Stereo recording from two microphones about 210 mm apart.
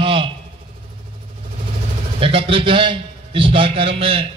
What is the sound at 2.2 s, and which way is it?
A man's voice, 25° right (ahead or behind).